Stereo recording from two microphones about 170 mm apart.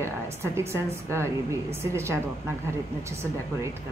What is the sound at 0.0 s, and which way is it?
A woman's voice, 15° right (ahead or behind).